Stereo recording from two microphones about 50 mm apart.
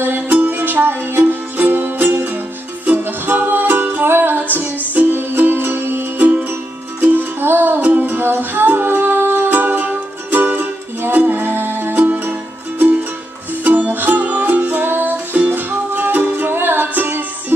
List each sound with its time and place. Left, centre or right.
0.0 s music: right